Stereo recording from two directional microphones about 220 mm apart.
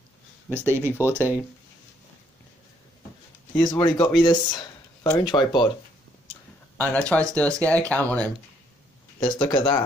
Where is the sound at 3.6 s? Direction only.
20° left (ahead or behind).